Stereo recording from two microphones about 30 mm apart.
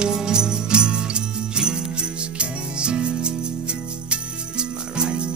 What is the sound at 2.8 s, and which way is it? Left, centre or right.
Music, right.